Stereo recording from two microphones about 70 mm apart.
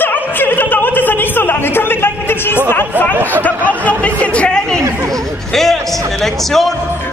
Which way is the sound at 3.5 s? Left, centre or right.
Right.